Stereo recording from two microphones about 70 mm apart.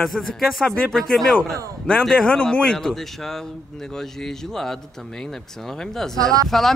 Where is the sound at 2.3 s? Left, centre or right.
Centre.